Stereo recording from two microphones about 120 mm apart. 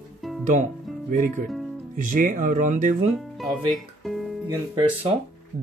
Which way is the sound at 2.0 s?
90° right.